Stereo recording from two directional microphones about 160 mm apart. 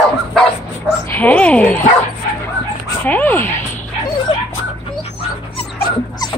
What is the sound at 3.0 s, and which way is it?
Speech, 10° left (ahead or behind).